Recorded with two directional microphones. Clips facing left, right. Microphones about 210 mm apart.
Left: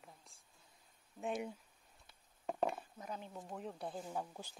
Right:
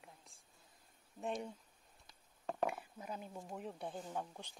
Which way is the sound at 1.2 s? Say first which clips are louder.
Left 1 dB; 5° left (ahead or behind).